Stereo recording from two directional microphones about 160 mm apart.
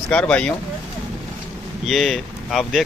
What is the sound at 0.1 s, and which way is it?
Speech, 5° left (ahead or behind).